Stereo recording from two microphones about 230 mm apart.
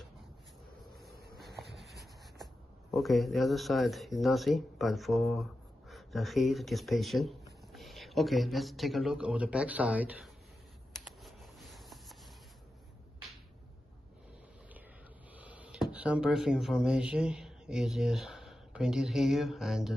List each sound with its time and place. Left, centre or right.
1.1 s a sound: right
1.8 s speech: centre
11.2 s rub: centre
15.3 s speech: centre